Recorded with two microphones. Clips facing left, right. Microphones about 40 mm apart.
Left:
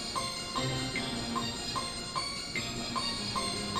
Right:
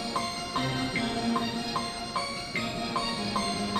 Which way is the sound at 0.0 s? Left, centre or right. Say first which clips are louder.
Right 5 dB; centre.